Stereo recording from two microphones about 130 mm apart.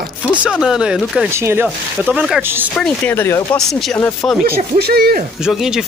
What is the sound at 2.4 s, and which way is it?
Speech, 15° right (ahead or behind).